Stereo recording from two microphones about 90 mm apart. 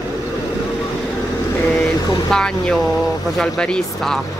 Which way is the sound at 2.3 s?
5° left (ahead or behind).